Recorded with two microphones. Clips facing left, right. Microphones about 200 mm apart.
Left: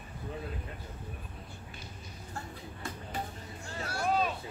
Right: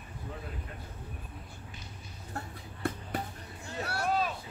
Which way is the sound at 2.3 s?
60° right (ahead or behind).